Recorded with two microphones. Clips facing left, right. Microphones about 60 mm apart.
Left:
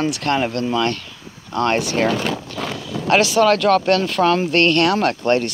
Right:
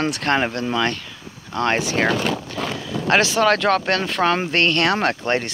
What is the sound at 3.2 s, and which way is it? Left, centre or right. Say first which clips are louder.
Speech: left 3 dB; right.